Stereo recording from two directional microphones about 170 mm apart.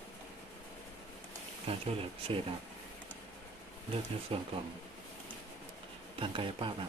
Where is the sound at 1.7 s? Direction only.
35° right (ahead or behind).